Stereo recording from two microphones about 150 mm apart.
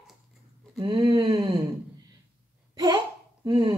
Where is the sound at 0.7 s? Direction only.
30° right (ahead or behind).